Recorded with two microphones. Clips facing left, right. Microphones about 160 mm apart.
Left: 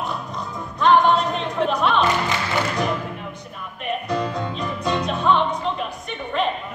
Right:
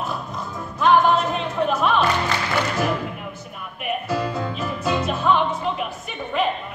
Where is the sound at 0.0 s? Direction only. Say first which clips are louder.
Even; centre (ahead or behind).